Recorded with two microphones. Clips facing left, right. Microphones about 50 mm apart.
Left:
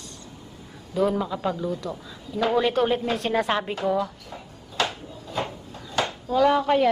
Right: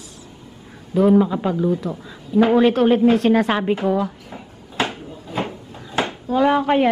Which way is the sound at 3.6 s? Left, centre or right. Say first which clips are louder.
Right 5 dB; centre.